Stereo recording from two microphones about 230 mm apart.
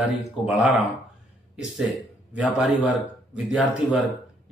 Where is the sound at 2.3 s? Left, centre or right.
Centre.